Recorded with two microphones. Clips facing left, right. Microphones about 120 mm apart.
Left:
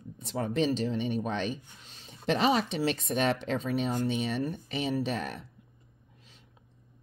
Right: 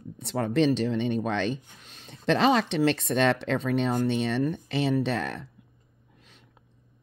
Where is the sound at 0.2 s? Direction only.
75° right (ahead or behind).